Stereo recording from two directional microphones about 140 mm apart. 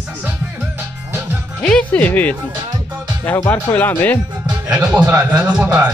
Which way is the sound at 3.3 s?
25° left (ahead or behind).